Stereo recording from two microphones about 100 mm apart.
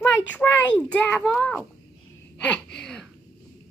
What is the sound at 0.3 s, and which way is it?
Speech, 15° left (ahead or behind).